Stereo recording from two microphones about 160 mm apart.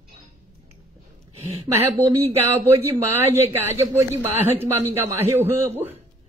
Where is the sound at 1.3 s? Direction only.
40° right (ahead or behind).